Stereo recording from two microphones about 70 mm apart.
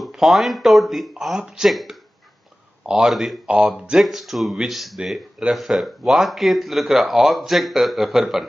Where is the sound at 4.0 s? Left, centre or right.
Centre.